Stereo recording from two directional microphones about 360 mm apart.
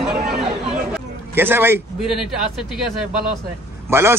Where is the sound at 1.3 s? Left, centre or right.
Centre.